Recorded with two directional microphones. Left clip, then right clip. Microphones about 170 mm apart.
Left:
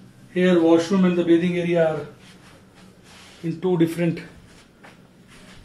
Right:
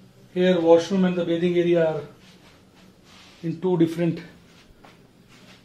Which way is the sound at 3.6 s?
25° right (ahead or behind).